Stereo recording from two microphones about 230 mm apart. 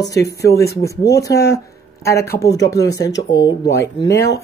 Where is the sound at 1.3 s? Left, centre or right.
Left.